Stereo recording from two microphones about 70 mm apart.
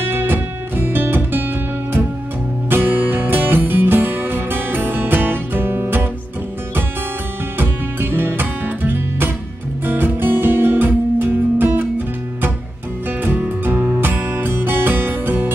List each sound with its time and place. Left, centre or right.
0.1 s music: right
2.7 s music: right
7.5 s music: right
13.2 s music: right